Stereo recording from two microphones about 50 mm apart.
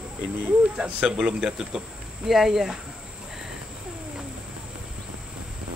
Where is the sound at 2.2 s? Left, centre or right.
Centre.